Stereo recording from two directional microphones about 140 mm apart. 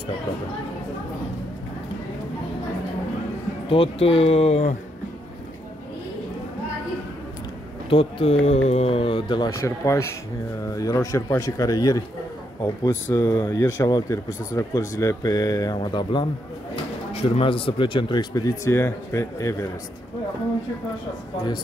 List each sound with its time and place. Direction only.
3.6 s speech: 40° left (ahead or behind)
7.9 s speech: 40° left (ahead or behind)
9.5 s speech: 20° left (ahead or behind)